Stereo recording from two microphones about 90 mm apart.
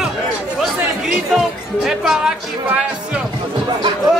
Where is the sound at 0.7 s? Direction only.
10° right (ahead or behind).